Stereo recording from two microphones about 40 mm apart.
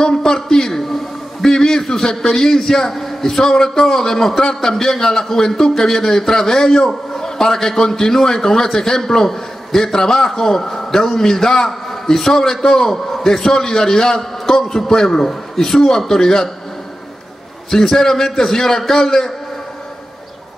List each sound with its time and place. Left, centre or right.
0.0 s a man's voice: centre
14.4 s a sound: centre
14.7 s a man's voice: centre
17.6 s a man's voice: centre